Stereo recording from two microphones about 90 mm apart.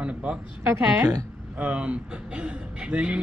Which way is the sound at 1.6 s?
15° right (ahead or behind).